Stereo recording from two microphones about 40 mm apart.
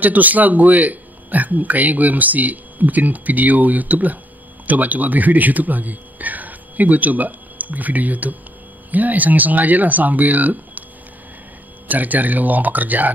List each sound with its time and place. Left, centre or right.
0.0 s speech: right
11.9 s speech: right